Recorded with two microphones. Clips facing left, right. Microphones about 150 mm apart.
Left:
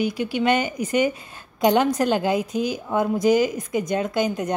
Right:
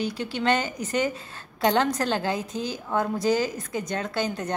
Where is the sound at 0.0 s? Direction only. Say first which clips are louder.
Left 4 dB; 10° left (ahead or behind).